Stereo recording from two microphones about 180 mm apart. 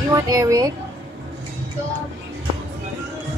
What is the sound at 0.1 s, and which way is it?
Speech, 15° right (ahead or behind).